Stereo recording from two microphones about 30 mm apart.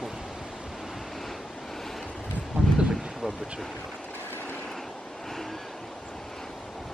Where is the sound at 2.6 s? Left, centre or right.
Right.